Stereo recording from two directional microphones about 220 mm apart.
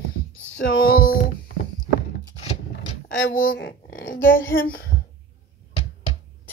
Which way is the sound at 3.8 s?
45° left (ahead or behind).